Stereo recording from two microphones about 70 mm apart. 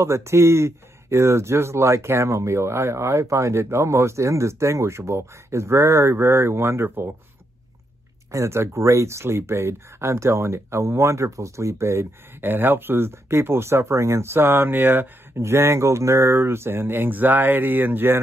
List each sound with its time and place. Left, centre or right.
0.0 s speech: right
8.3 s speech: right